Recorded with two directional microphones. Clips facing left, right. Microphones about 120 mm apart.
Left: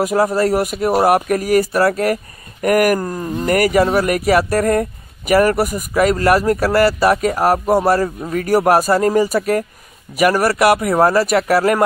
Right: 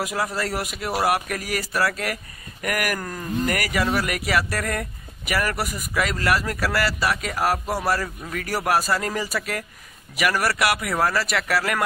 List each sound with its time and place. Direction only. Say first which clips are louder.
0.0 s speech: left 11 dB; 45° left (ahead or behind)
8.0 s speech: left 10 dB; 35° left (ahead or behind)
11.2 s speech: left 10 dB; 45° left (ahead or behind)